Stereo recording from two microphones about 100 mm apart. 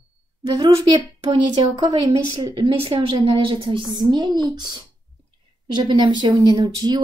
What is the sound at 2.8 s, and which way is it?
A woman's voice, 70° right (ahead or behind).